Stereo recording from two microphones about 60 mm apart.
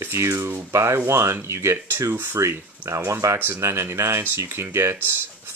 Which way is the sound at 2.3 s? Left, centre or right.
Right.